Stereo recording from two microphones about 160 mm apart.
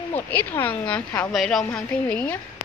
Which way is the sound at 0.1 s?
10° left (ahead or behind).